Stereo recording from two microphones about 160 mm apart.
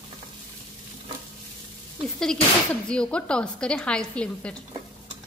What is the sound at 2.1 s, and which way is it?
Speech, 5° left (ahead or behind).